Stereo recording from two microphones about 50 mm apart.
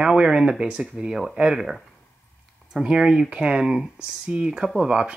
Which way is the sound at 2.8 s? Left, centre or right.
Centre.